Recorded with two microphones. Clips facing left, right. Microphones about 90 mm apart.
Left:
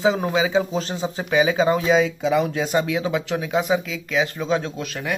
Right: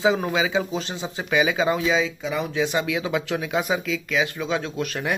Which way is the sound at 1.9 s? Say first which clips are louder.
Left 6 dB; 60° left (ahead or behind).